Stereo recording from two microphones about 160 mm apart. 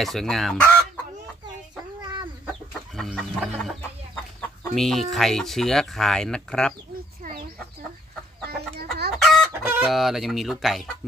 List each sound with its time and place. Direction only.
0.0 s speech: centre (ahead or behind)
3.0 s chicken: centre (ahead or behind)
8.5 s chicken: 90° right
9.1 s chicken: centre (ahead or behind)
9.5 s chicken: 15° right (ahead or behind)
9.8 s speech: centre (ahead or behind)